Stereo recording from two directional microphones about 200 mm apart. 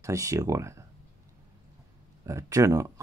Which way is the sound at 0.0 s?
15° right (ahead or behind).